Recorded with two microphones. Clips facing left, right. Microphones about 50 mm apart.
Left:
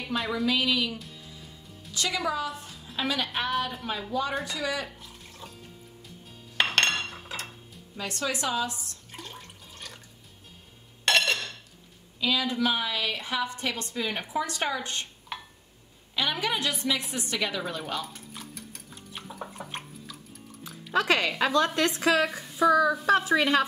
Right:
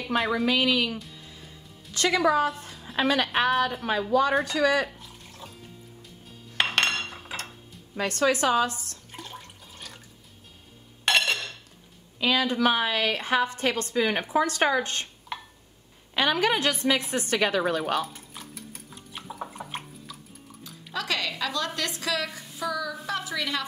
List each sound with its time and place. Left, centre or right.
0.3 s a woman's voice: right
2.0 s a woman's voice: right
3.5 s a woman's voice: right
4.1 s a woman's voice: right
4.8 s a sound: centre
6.5 s cutlery: centre
7.9 s a woman's voice: right
9.1 s water: centre
11.1 s dishes: centre
12.2 s a woman's voice: right
15.3 s a sound: centre
16.2 s a woman's voice: right
18.0 s stir: centre
20.9 s a woman's voice: left